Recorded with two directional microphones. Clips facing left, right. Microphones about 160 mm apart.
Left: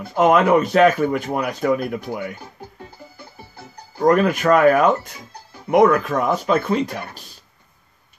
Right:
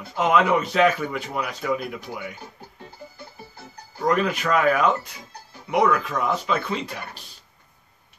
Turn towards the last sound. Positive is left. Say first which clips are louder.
# left 9 dB
turn(degrees=45)  # may be behind; listen again after turning